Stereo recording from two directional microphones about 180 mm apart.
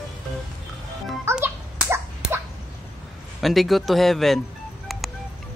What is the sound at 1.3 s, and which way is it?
Dog, 10° right (ahead or behind).